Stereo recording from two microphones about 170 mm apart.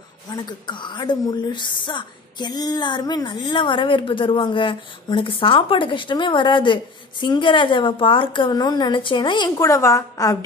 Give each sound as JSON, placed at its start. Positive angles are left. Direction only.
{"t": 0.3, "sound": "a woman's voice", "side_deg": 25}